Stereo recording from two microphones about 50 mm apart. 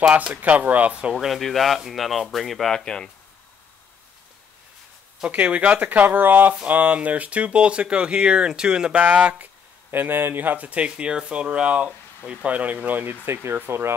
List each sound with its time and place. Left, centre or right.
0.1 s speech: right
1.2 s speech: centre
2.7 s speech: centre
5.2 s speech: right
9.0 s speech: right
9.4 s speech: right
10.9 s speech: centre; by 13.3 s right
13.3 s speech: right